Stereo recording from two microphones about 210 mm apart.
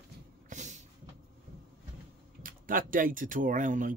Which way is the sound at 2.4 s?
40° right (ahead or behind).